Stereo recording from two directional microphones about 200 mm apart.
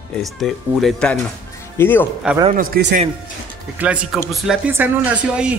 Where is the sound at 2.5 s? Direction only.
45° right (ahead or behind).